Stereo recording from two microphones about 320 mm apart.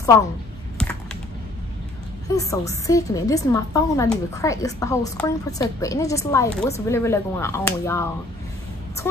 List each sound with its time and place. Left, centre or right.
2.2 s a woman's voice: centre